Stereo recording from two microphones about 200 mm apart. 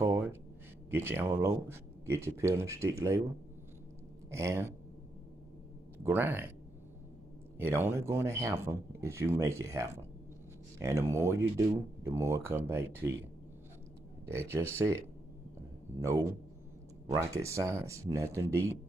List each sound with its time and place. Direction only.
0.0 s a sound: 10° right (ahead or behind)
0.8 s speech: 10° right (ahead or behind)
4.3 s speech: 15° right (ahead or behind)
6.0 s speech: 10° right (ahead or behind)
7.5 s speech: 10° right (ahead or behind)
14.3 s speech: 10° right (ahead or behind)
17.3 s speech: 15° right (ahead or behind)